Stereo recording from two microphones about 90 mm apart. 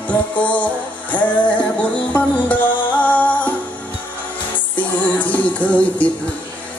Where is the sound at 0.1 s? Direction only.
15° left (ahead or behind).